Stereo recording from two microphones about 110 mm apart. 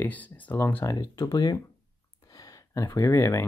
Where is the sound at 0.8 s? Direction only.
35° left (ahead or behind).